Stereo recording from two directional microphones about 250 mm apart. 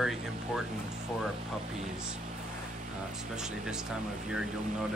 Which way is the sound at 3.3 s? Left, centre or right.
Centre.